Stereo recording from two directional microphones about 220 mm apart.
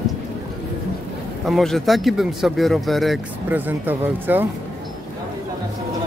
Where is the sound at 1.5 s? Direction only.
Centre (ahead or behind).